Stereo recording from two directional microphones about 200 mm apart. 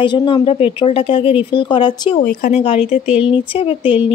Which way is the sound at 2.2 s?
40° left (ahead or behind).